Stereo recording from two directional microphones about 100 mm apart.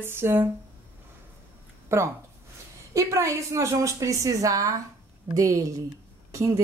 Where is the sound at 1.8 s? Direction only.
25° right (ahead or behind).